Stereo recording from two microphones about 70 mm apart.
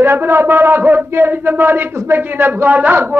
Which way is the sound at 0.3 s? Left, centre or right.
Right.